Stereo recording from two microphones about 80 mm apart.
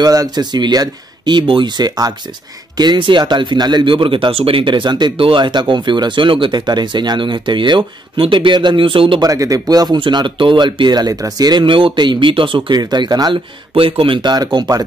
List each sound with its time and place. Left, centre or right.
0.0 s speech: right
2.8 s speech: right
9.2 s speech: right
9.9 s speech: right
11.6 s speech: right
14.0 s speech: right